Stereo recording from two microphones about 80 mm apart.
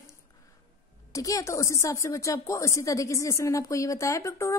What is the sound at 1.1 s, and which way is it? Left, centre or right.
Speech, left.